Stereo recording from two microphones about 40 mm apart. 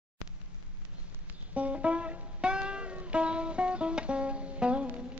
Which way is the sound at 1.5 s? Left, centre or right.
Right.